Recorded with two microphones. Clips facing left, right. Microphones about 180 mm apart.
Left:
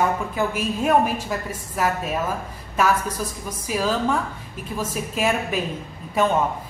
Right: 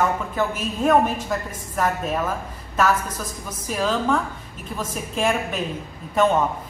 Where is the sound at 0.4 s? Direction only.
10° left (ahead or behind).